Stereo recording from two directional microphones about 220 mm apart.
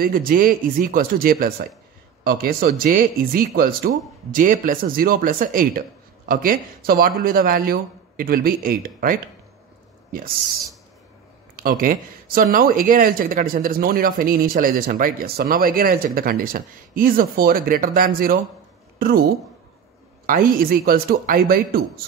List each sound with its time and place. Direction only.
0.0 s speech: 40° right (ahead or behind)
11.5 s a woman's voice: 40° right (ahead or behind)
20.2 s a man's voice: 40° right (ahead or behind)